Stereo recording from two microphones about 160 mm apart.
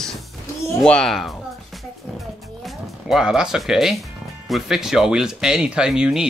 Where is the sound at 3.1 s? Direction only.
5° right (ahead or behind).